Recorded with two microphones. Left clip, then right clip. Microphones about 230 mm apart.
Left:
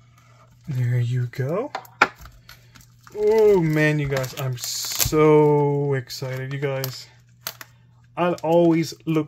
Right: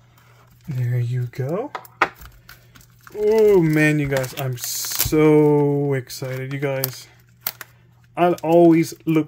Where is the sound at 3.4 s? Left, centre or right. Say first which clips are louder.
Right 3 dB; centre.